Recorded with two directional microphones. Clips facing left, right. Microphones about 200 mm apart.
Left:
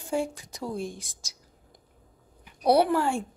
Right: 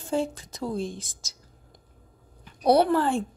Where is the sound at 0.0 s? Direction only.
15° left (ahead or behind).